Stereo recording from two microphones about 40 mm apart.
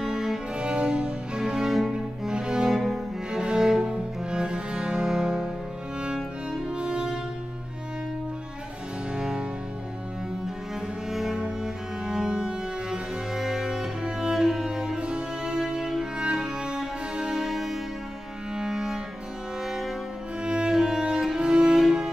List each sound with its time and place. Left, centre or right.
0.0 s cello: centre
0.6 s cello: right
2.6 s cello: centre
3.3 s cello: centre
5.1 s music: centre
6.5 s music: right
9.1 s music: centre
11.1 s cello: centre
12.3 s music: right
18.6 s cello: centre
19.6 s music: centre